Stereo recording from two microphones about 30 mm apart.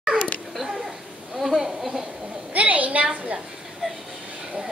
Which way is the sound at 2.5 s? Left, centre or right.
Right.